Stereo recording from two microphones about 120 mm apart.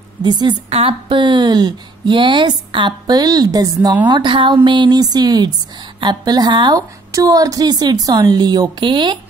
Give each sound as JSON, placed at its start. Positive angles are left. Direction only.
{"t": 0.2, "sound": "speech", "side_deg": -35}
{"t": 0.7, "sound": "speech", "side_deg": -55}
{"t": 4.1, "sound": "speech", "side_deg": -40}